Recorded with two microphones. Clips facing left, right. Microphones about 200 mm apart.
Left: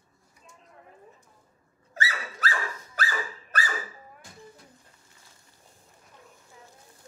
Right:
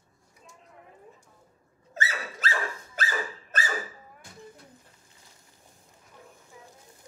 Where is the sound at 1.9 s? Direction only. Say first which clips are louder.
Even; 25° right (ahead or behind).